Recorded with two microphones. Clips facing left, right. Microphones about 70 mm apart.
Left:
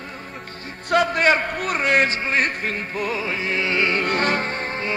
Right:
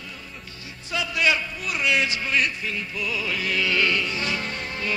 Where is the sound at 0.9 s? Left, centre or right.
Left.